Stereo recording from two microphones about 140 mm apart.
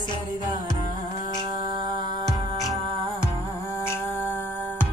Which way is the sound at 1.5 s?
30° right (ahead or behind).